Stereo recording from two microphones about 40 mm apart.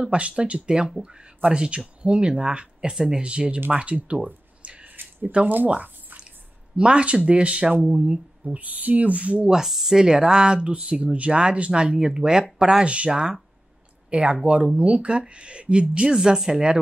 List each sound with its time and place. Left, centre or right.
0.0 s speech: right
4.6 s a sound: right
5.2 s speech: right
6.8 s speech: right
8.5 s speech: right
9.7 s speech: centre; by 16.2 s right
16.2 s speech: centre